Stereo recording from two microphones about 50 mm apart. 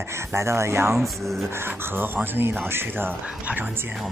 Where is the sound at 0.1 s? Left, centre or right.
Right.